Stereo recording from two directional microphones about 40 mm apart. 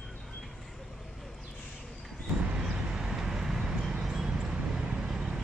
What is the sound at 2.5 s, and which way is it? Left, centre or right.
Vehicle, right.